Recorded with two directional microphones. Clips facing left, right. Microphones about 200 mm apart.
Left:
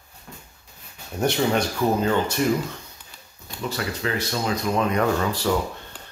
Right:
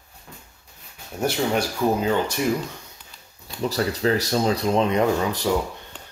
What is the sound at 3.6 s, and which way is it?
Speech, 35° right (ahead or behind).